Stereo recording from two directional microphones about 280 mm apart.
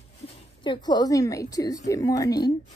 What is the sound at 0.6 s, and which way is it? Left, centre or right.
A woman's voice, centre.